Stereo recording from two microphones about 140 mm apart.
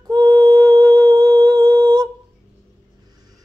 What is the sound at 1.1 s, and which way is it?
Humming, 30° right (ahead or behind).